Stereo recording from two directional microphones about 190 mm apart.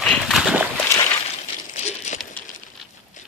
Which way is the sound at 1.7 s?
35° left (ahead or behind).